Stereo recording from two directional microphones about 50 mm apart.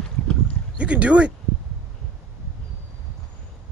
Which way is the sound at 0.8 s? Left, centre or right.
Right.